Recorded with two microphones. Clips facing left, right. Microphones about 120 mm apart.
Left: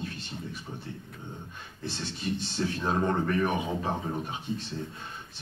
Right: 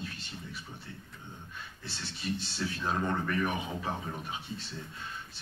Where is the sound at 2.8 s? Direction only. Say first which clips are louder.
Left 4 dB; 25° left (ahead or behind).